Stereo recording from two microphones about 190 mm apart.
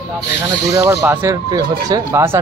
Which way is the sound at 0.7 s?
15° right (ahead or behind).